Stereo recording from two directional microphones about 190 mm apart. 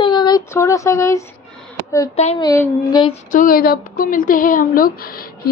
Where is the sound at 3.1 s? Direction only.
45° left (ahead or behind).